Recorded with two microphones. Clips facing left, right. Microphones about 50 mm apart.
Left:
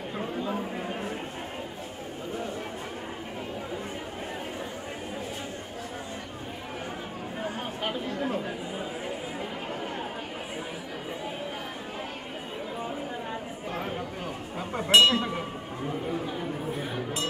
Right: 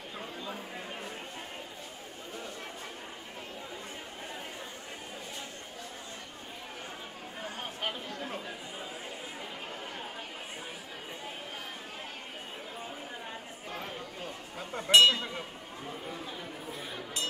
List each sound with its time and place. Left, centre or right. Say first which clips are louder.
0.2 s a sound: left 10 dB; centre
7.4 s chatter: left 4 dB; centre
13.7 s chink: left 7 dB; centre